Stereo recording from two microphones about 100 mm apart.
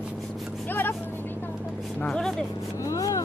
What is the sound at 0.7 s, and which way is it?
Vehicle, 20° left (ahead or behind).